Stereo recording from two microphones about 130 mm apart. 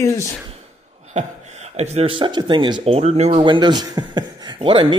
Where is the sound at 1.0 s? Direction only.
60° right (ahead or behind); by 2.8 s 35° right (ahead or behind).